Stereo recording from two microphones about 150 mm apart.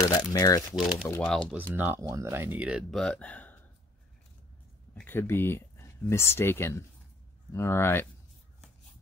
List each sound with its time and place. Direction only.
0.3 s speech: 25° left (ahead or behind)
0.7 s speech: 5° right (ahead or behind)
1.0 s speech: 10° left (ahead or behind)
1.5 s speech: 10° right (ahead or behind)
3.0 s speech: 5° left (ahead or behind)
4.9 s speech: 15° left (ahead or behind)